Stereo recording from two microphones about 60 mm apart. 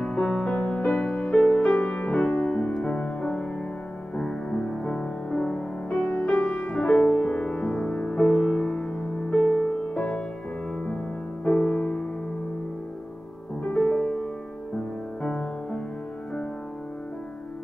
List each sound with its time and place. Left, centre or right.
0.0 s music: centre
11.4 s music: centre
15.2 s music: centre